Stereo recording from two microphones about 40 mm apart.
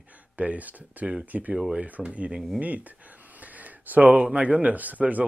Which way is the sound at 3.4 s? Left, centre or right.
Right.